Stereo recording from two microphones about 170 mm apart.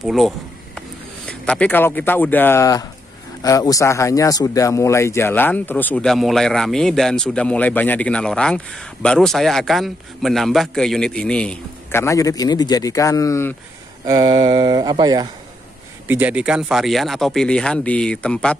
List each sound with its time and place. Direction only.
0.0 s speech: centre (ahead or behind); by 13.6 s 15° left (ahead or behind)
14.0 s speech: 25° right (ahead or behind)
16.1 s speech: 10° right (ahead or behind)